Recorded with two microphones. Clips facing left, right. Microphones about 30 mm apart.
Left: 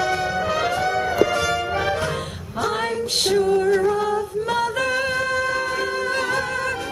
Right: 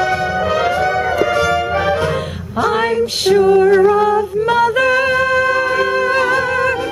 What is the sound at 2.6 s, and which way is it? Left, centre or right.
Female singing, right.